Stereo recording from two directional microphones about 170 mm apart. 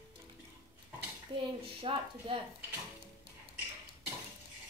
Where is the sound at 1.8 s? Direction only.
30° right (ahead or behind).